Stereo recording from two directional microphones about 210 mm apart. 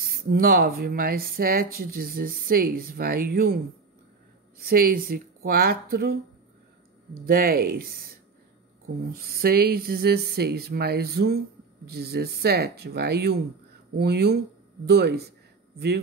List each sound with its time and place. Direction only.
0.0 s speech: 45° right (ahead or behind)
4.6 s speech: 45° right (ahead or behind)
7.2 s speech: 45° right (ahead or behind)
9.2 s speech: 45° right (ahead or behind)